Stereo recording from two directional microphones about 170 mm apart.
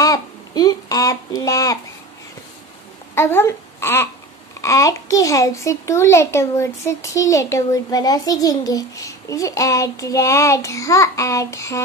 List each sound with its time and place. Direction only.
0.0 s speech: 20° left (ahead or behind)
3.2 s a child's voice: 15° left (ahead or behind)